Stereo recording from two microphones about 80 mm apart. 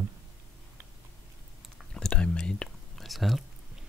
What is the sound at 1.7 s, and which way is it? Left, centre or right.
Chewing, centre.